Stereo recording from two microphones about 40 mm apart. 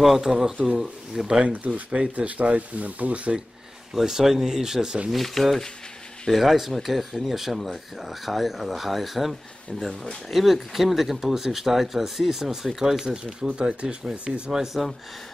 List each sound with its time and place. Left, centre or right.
0.0 s speech: centre
1.5 s speech: right
3.9 s speech: centre
5.1 s speech: centre
13.5 s speech: right
14.5 s speech: centre